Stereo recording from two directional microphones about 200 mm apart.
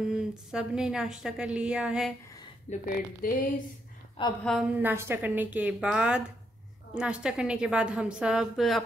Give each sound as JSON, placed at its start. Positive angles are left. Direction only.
{"t": 0.1, "sound": "a woman's voice", "side_deg": -5}
{"t": 2.7, "sound": "a woman's voice", "side_deg": 45}
{"t": 4.5, "sound": "a woman's voice", "side_deg": -5}